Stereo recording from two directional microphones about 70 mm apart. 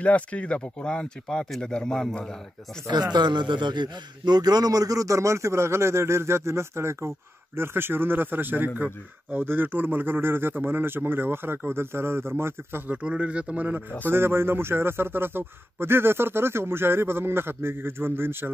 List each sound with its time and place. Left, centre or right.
0.0 s speech: centre
2.9 s a man's voice: right
12.8 s a man's voice: centre
14.1 s a man's voice: right